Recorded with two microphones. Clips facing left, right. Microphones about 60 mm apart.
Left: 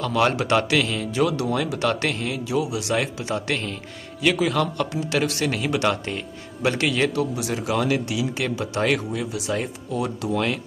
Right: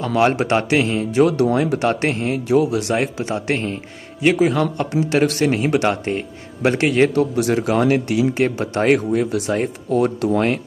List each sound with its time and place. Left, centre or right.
0.0 s speech: right